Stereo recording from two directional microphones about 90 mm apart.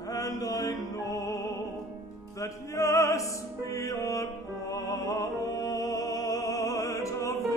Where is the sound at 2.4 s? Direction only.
35° left (ahead or behind).